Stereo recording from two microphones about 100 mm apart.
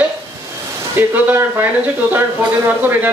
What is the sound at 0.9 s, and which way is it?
Speech, 20° right (ahead or behind).